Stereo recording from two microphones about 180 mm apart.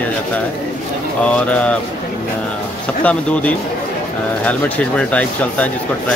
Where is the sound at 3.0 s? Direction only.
10° left (ahead or behind).